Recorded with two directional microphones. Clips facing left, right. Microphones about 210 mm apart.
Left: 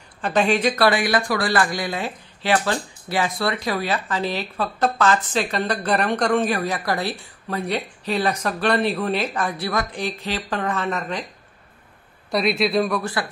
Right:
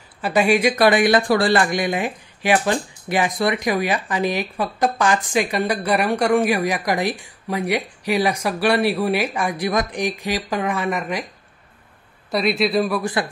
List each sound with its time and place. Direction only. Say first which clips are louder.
0.2 s speech: right 2 dB; 10° right (ahead or behind)
12.3 s a man's voice: right 1 dB; centre (ahead or behind)
13.0 s a man's voice: right 4 dB; 20° right (ahead or behind)